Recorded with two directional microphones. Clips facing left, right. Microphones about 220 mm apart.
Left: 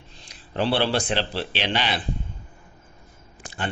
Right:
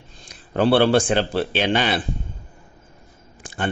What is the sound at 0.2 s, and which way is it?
Speech, 50° right (ahead or behind).